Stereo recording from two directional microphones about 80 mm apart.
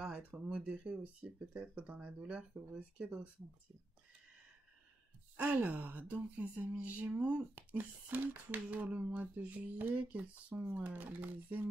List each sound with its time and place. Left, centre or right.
0.5 s speech: centre
5.4 s speech: right